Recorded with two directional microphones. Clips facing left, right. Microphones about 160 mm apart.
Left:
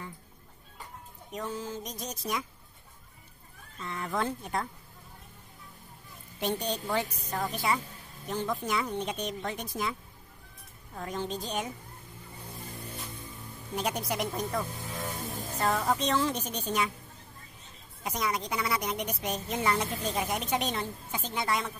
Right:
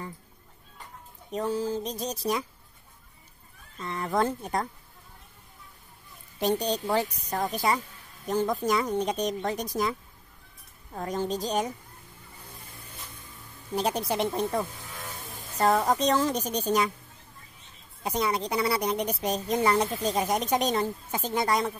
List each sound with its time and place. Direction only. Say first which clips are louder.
1.3 s a woman's voice: right 8 dB; 35° right (ahead or behind)
3.8 s a woman's voice: right 5 dB; 40° right (ahead or behind)
6.4 s a woman's voice: right 5 dB; 40° right (ahead or behind)
11.0 s a woman's voice: right 5 dB; 40° right (ahead or behind)
13.7 s speech: right 4 dB; 30° right (ahead or behind)
14.8 s vehicle: left 5 dB; 20° left (ahead or behind)
15.6 s a woman's voice: right 5 dB; 40° right (ahead or behind)
18.0 s a woman's voice: right 4 dB; 30° right (ahead or behind)